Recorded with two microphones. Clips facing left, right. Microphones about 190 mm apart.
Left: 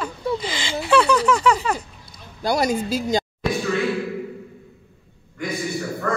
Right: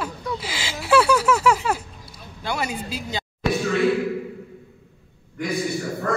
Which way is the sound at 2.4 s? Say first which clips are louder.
Left 7 dB; 40° left (ahead or behind).